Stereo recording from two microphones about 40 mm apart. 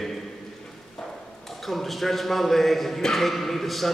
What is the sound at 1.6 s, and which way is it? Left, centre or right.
A man's voice, centre.